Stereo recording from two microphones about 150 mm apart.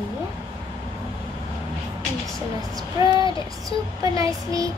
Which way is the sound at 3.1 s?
35° left (ahead or behind).